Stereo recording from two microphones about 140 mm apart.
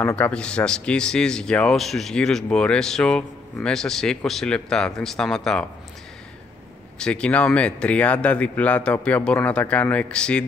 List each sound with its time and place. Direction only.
0.0 s speech: 10° left (ahead or behind)
7.0 s speech: 5° left (ahead or behind)